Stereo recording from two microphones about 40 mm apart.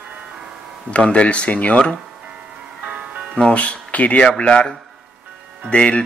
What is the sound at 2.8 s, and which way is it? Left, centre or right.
Music, right.